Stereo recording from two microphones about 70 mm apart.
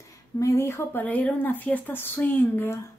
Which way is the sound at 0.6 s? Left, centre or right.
Left.